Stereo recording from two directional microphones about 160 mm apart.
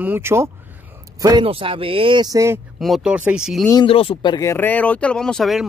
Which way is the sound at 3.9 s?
35° left (ahead or behind).